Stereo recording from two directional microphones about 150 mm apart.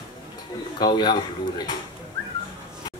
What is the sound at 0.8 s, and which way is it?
Speech, 30° left (ahead or behind).